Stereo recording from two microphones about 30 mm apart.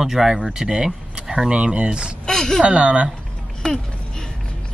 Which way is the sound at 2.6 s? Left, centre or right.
Right.